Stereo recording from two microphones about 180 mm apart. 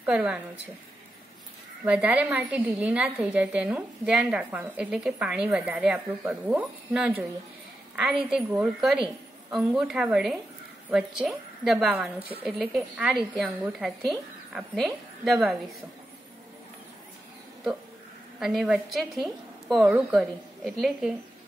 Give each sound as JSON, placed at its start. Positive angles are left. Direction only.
{"t": 0.0, "sound": "a woman's voice", "side_deg": -5}
{"t": 1.9, "sound": "a woman's voice", "side_deg": -5}
{"t": 18.4, "sound": "a woman's voice", "side_deg": 0}